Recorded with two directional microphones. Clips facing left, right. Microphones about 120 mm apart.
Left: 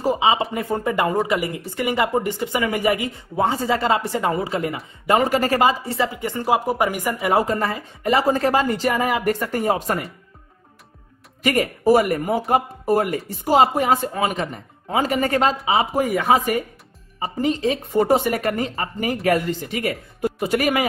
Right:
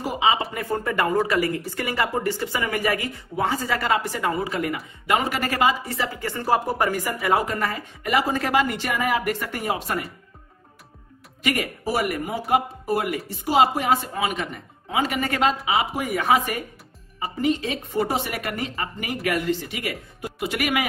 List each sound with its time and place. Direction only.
0.0 s speech: 25° left (ahead or behind)
7.2 s a woman's voice: 25° left (ahead or behind)
11.4 s a woman's voice: 40° left (ahead or behind)